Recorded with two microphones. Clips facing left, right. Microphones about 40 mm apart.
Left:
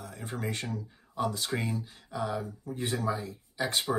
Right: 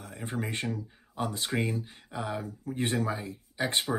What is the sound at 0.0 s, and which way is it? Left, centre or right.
Speech, right.